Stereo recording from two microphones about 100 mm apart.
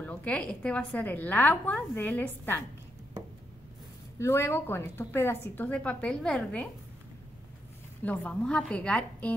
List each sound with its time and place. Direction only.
0.0 s a woman's voice: 15° left (ahead or behind)
4.2 s a woman's voice: 25° left (ahead or behind)
5.7 s a woman's voice: 15° left (ahead or behind)
8.0 s a woman's voice: 15° left (ahead or behind)